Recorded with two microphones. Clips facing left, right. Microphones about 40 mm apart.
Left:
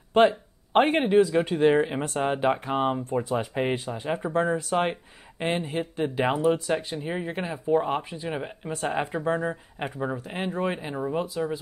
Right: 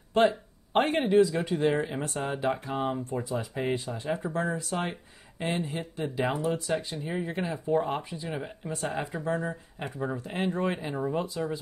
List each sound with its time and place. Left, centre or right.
0.1 s a sound: left
1.0 s speech: centre
1.3 s speech: left
5.6 s speech: centre
8.3 s speech: left
10.2 s speech: centre